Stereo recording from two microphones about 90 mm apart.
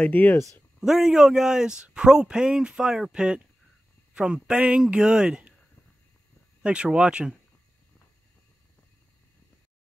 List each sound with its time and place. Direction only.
0.0 s speech: 20° left (ahead or behind)
0.7 s a man's voice: 5° right (ahead or behind)
6.6 s a man's voice: 10° right (ahead or behind)